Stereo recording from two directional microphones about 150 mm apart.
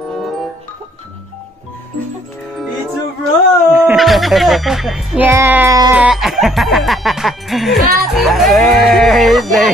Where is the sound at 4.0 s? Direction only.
Centre (ahead or behind).